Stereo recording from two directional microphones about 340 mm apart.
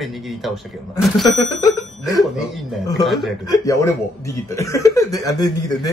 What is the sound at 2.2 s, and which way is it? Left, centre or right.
Speech, centre.